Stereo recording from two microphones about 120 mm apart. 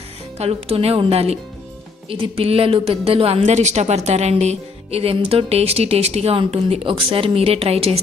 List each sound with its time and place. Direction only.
0.4 s a woman's voice: 55° right (ahead or behind)
3.4 s speech: 75° right (ahead or behind); by 8.0 s 60° right (ahead or behind)